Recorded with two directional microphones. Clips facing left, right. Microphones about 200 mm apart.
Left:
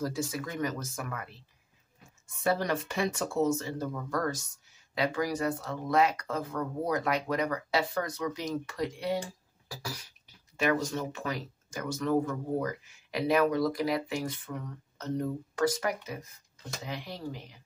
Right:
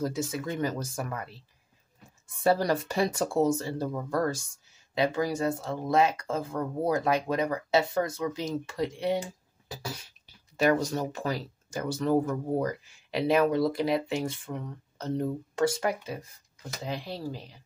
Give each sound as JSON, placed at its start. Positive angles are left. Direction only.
{"t": 0.0, "sound": "speech", "side_deg": -25}
{"t": 2.4, "sound": "speech", "side_deg": -35}
{"t": 9.7, "sound": "cough", "side_deg": -25}
{"t": 10.6, "sound": "speech", "side_deg": -40}